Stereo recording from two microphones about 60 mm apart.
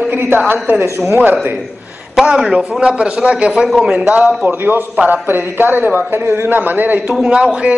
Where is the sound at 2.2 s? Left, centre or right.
Centre.